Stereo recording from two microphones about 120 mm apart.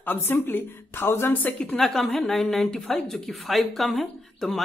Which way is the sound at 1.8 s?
Centre (ahead or behind).